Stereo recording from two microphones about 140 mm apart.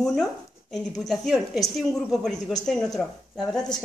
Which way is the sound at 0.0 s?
Centre (ahead or behind).